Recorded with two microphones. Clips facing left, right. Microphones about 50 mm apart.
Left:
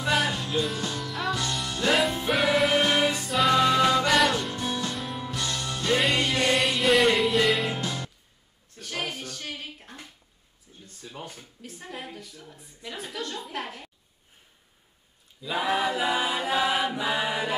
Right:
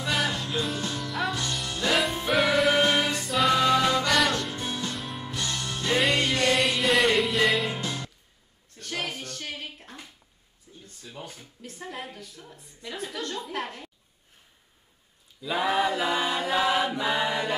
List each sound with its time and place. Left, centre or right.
0.0 s music: centre
0.5 s music: centre
4.6 s music: centre
4.8 s music: centre
6.3 s music: centre
6.6 s music: centre
8.7 s a sound: centre
11.1 s speech: left
11.6 s a woman's voice: centre
15.4 s chant: centre